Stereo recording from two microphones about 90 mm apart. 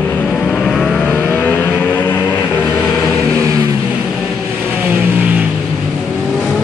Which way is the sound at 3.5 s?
40° right (ahead or behind).